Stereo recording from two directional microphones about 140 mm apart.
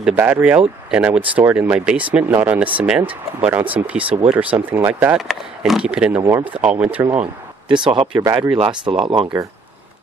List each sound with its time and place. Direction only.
0.1 s speech: 15° right (ahead or behind)
5.3 s speech: centre (ahead or behind)
7.6 s speech: 35° right (ahead or behind)